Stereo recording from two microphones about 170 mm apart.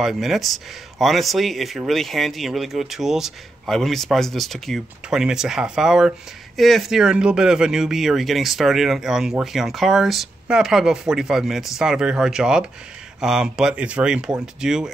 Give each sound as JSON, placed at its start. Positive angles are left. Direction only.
{"t": 0.0, "sound": "speech", "side_deg": 0}